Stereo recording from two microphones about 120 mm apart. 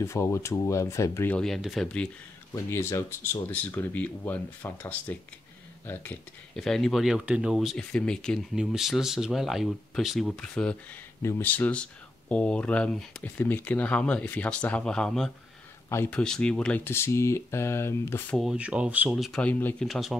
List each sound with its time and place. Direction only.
0.0 s speech: 25° left (ahead or behind)
1.3 s speech: centre (ahead or behind)
2.5 s speech: 20° left (ahead or behind)
6.5 s speech: 5° left (ahead or behind)
16.8 s speech: 20° left (ahead or behind)
18.4 s speech: 5° right (ahead or behind)